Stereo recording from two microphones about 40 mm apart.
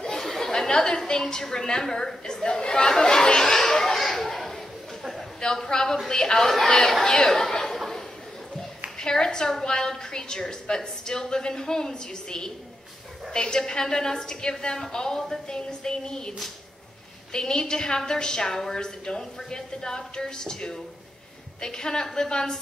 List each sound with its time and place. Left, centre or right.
0.0 s a sound: centre
5.4 s a woman's voice: centre
9.0 s a woman's voice: centre